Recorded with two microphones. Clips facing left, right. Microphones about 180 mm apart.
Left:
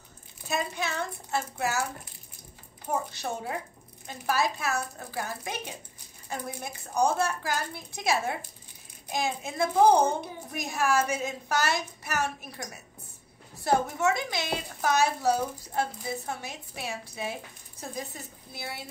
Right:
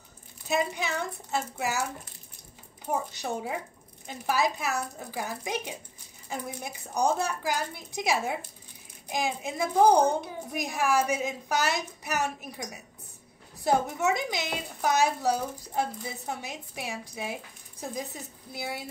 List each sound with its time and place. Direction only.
0.5 s a woman's voice: 15° right (ahead or behind)
2.9 s a woman's voice: 15° right (ahead or behind)
13.7 s a woman's voice: 15° right (ahead or behind)